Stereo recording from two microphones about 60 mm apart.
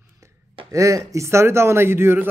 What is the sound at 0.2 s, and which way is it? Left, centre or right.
Speech, right.